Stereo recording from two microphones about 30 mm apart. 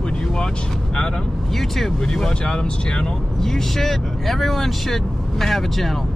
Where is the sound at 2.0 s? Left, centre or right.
Left.